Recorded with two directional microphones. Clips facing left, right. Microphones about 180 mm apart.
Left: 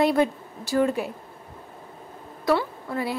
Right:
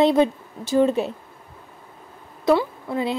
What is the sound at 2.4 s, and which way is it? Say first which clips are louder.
Speech: right 4 dB; 20° right (ahead or behind).